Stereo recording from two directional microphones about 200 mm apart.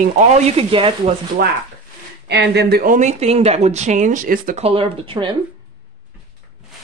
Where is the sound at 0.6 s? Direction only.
25° right (ahead or behind).